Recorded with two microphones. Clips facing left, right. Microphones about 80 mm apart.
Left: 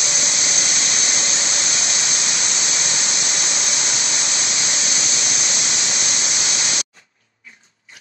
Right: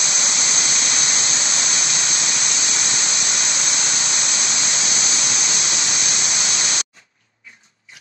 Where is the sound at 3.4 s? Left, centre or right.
Left.